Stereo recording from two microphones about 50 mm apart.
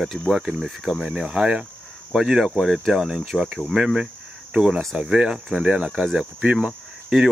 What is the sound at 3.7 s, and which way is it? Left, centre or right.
Speech, centre.